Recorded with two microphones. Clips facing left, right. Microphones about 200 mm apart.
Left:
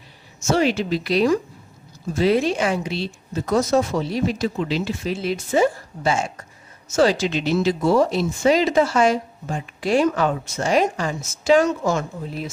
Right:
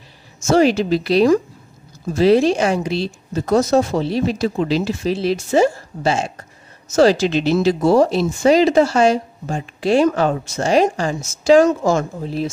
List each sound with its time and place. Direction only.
0.5 s speech: 40° right (ahead or behind)
9.8 s speech: 25° right (ahead or behind)
11.6 s a woman's voice: 45° right (ahead or behind)